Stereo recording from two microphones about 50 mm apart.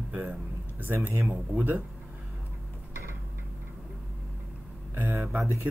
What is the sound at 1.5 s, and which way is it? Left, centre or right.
Speech, right.